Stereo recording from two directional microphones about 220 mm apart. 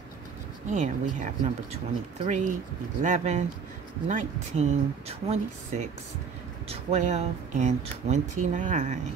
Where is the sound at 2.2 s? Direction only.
35° right (ahead or behind).